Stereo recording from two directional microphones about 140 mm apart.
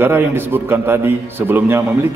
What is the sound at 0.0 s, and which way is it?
A man's voice, 15° right (ahead or behind).